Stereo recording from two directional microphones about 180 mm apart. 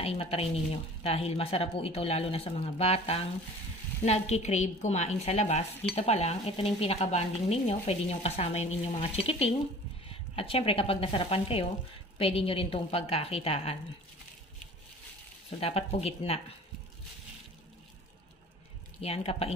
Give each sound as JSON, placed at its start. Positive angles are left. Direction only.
{"t": 0.0, "sound": "a woman's voice", "side_deg": 35}
{"t": 15.6, "sound": "a woman's voice", "side_deg": 35}
{"t": 18.9, "sound": "a woman's voice", "side_deg": 35}